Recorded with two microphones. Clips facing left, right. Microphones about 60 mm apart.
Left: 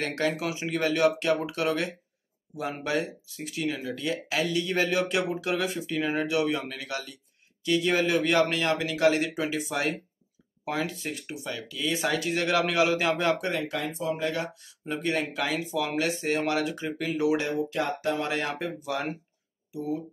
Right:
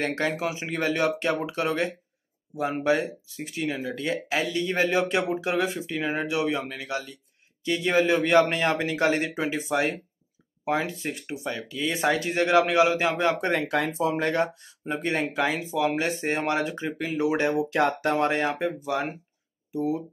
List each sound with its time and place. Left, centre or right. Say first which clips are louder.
0.0 s speech: right 2 dB; centre
3.9 s speech: right 2 dB; right
8.5 s speech: right 2 dB; right
9.7 s speech: right 4 dB; centre
11.3 s speech: right 4 dB; right
12.3 s speech: right 5 dB; right
13.4 s speech: right 5 dB; right
14.2 s speech: right 5 dB; right; by 15.9 s centre
15.9 s speech: right 1 dB; right
17.5 s speech: right 5 dB; right
18.4 s speech: right 5 dB; centre
19.7 s speech: right 4 dB; right